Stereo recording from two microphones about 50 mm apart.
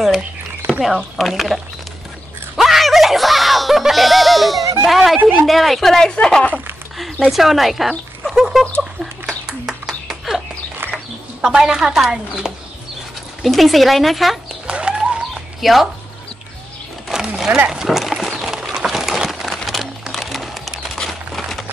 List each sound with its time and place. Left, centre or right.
0.8 s speech: centre
2.5 s music: centre
5.2 s a woman's voice: right
5.5 s speech: centre
7.2 s speech: centre
8.2 s bird: centre
9.5 s a sound: centre
11.4 s a woman's voice: centre
13.4 s speech: centre
14.7 s bird: centre
15.3 s chicken: centre
17.1 s a sound: centre
19.4 s music: centre